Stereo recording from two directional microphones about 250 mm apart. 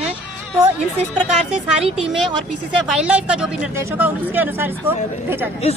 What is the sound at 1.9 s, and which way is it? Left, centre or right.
Speech, centre.